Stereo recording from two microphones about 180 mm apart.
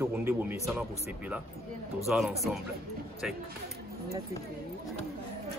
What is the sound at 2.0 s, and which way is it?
Speech, centre (ahead or behind).